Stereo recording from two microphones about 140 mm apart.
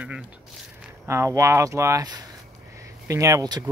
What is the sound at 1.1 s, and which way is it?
Speech, 20° right (ahead or behind).